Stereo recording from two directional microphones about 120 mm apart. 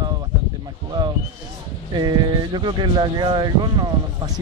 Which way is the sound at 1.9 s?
35° right (ahead or behind).